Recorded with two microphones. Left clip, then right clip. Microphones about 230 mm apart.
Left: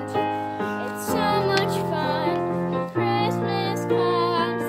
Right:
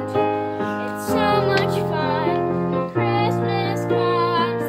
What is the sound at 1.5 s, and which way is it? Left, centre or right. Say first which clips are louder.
Music: right 3 dB; left.